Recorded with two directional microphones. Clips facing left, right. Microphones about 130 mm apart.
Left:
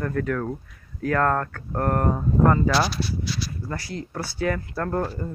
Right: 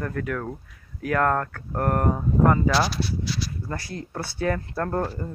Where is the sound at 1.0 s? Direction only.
15° right (ahead or behind).